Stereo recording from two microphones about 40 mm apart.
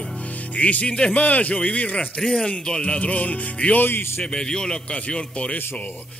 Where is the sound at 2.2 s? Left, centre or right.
Centre.